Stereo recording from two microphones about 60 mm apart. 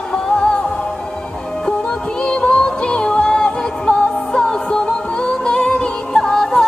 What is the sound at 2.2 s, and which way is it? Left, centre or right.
Music, centre.